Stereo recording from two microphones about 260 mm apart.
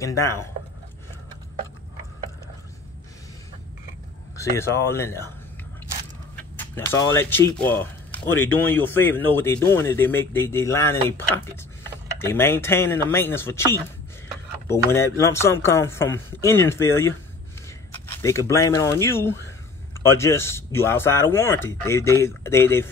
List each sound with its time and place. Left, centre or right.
0.0 s speech: centre
4.4 s speech: centre
6.3 s speech: centre